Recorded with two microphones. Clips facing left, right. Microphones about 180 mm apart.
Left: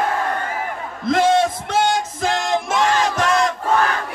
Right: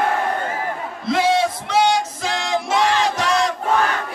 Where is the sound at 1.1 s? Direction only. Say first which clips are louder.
Left 2 dB; 50° left (ahead or behind).